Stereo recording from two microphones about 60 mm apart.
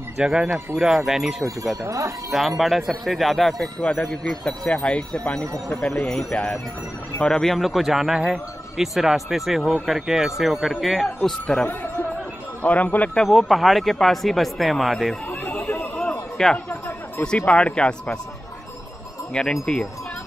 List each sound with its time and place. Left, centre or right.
0.2 s speech: centre
1.9 s speech: right
2.3 s speech: centre
11.2 s speech: centre
12.6 s a man's voice: left
13.1 s speech: centre
15.4 s chatter: left
16.1 s chatter: centre
17.5 s speech: centre
19.3 s speech: centre